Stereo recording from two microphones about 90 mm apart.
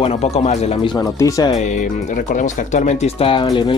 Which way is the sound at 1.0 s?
40° left (ahead or behind).